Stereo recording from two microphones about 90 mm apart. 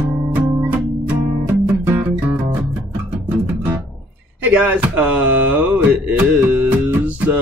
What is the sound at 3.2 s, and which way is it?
Guitar, 25° right (ahead or behind).